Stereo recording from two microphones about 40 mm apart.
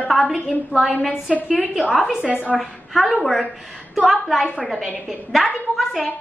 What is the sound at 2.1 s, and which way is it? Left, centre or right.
Speech, right.